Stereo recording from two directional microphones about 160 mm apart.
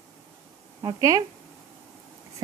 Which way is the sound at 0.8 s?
20° right (ahead or behind).